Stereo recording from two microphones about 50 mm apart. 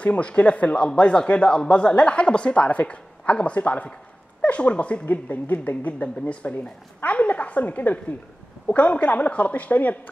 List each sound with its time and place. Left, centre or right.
0.0 s speech: left
5.0 s speech: left